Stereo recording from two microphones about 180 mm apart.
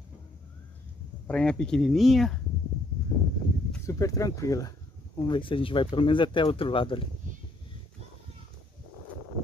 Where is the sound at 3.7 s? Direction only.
15° left (ahead or behind).